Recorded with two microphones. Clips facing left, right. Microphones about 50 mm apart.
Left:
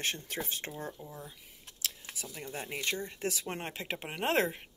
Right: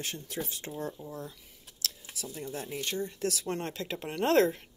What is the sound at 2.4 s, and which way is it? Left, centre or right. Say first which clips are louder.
Speech: even; left.